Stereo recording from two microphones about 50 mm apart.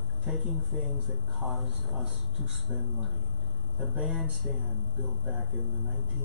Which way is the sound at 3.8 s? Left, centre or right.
Centre.